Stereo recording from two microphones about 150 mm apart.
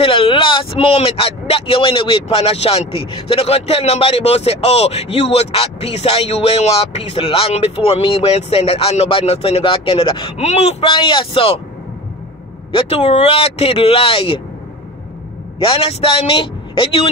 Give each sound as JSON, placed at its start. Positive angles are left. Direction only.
{"t": 0.0, "sound": "speech", "side_deg": 35}
{"t": 12.7, "sound": "speech", "side_deg": 45}
{"t": 15.6, "sound": "speech", "side_deg": 40}